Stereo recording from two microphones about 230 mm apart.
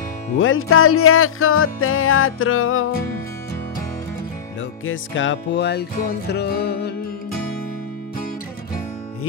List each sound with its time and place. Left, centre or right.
0.4 s music: left
4.8 s music: left